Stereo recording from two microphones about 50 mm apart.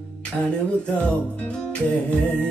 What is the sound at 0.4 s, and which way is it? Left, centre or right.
Music, left.